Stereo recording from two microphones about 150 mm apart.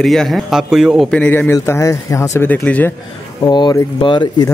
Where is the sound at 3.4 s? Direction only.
30° left (ahead or behind).